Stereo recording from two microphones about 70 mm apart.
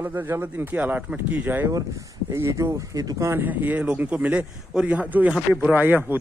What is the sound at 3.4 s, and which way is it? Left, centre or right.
Speech, right.